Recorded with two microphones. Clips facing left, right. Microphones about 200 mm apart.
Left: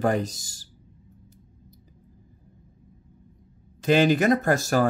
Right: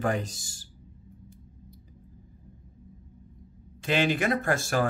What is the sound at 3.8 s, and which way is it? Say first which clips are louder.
Speech: left 6 dB; 40° left (ahead or behind).